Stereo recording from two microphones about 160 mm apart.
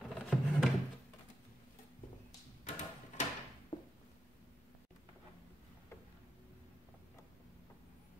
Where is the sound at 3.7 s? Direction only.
30° left (ahead or behind).